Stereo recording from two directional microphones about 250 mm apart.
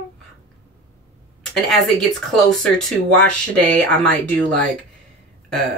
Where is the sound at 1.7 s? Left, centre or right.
Centre.